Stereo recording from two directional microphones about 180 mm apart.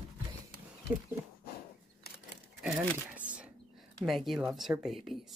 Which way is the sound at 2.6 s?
5° right (ahead or behind).